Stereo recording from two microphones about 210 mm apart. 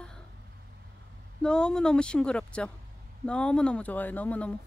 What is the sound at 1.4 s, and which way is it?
Speech, 5° left (ahead or behind).